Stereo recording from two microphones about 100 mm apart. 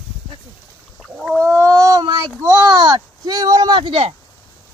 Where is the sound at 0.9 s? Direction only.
Centre (ahead or behind).